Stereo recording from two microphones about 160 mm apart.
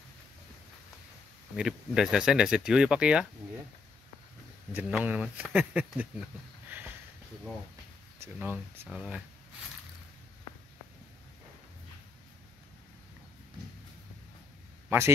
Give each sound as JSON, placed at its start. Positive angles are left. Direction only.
{"t": 1.6, "sound": "speech", "side_deg": -5}
{"t": 4.7, "sound": "speech", "side_deg": -10}
{"t": 8.2, "sound": "speech", "side_deg": -10}
{"t": 14.9, "sound": "speech", "side_deg": -15}